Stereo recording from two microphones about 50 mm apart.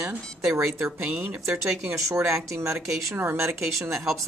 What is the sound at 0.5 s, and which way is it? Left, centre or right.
Speech, right.